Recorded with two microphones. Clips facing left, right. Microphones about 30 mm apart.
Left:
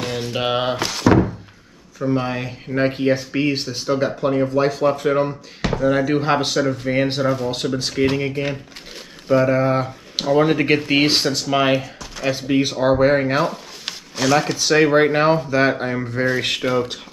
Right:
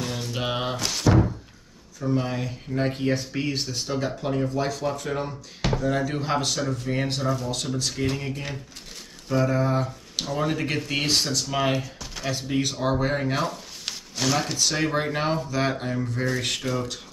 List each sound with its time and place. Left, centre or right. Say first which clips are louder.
0.0 s a sound: left 6 dB; left
0.8 s speech: left 3 dB; centre
2.0 s speech: left 5 dB; left
11.7 s speech: left 7 dB; centre
14.7 s speech: left 15 dB; left